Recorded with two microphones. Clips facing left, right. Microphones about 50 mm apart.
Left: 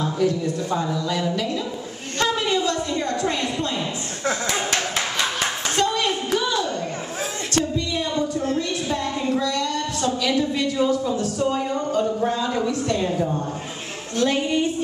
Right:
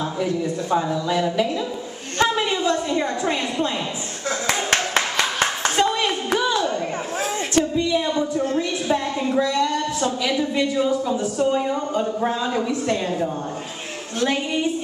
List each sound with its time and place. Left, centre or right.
0.0 s a woman's voice: centre
4.5 s clapping: right
5.8 s a sound: right
7.5 s a woman's voice: centre